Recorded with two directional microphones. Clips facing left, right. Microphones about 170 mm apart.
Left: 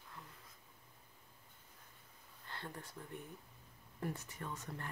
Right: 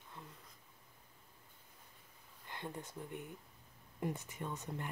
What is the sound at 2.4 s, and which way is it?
Speech, 15° right (ahead or behind).